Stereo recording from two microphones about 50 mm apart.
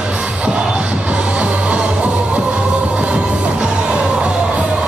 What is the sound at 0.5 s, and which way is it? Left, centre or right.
Music, right.